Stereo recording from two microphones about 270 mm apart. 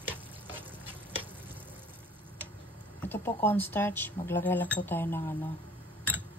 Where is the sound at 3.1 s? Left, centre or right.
Centre.